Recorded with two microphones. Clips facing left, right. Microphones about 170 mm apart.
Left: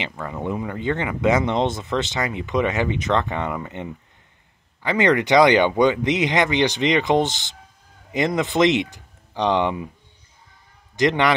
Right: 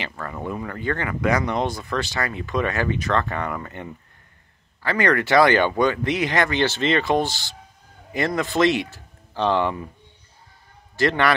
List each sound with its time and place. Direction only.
0.0 s speech: 15° left (ahead or behind)
11.0 s a man's voice: 20° left (ahead or behind)